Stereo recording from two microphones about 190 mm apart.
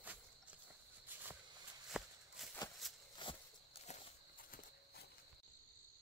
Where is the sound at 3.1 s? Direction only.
25° left (ahead or behind).